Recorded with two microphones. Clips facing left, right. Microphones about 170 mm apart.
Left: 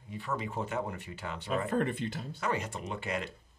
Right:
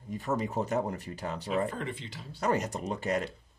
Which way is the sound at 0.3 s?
40° right (ahead or behind).